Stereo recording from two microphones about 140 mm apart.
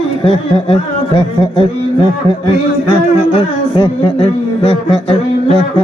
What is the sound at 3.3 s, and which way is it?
Speech, 40° left (ahead or behind).